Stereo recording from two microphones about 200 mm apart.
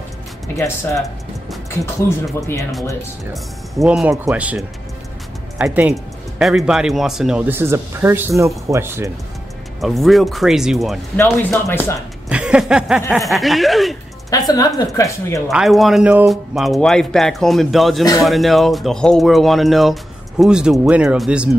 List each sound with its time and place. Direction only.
0.6 s speech: 15° left (ahead or behind)
3.7 s speech: centre (ahead or behind)
9.8 s speech: centre (ahead or behind)
11.1 s speech: 10° left (ahead or behind)
12.3 s a sound: 5° right (ahead or behind)
13.1 s speech: centre (ahead or behind)
14.3 s a woman's voice: 20° left (ahead or behind)
15.5 s speech: centre (ahead or behind)